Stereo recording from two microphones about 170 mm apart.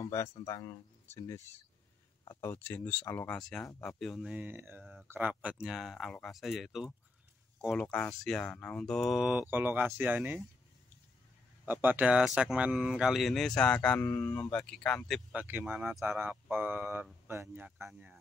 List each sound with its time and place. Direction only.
0.0 s speech: 20° left (ahead or behind); by 4.4 s centre (ahead or behind)
4.4 s speech: 10° right (ahead or behind)
11.6 s speech: 10° right (ahead or behind); by 15.2 s 5° left (ahead or behind)
15.3 s speech: 10° right (ahead or behind)